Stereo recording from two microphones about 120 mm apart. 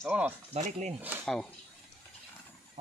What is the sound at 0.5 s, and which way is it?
Speech, 80° right.